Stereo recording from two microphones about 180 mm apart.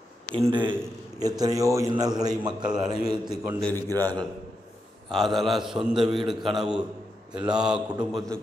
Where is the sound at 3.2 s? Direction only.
5° left (ahead or behind).